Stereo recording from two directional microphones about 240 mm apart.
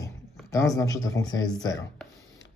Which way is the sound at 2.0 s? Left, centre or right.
Centre.